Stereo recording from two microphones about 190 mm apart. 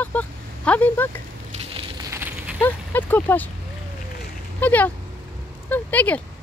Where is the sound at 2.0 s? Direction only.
10° right (ahead or behind).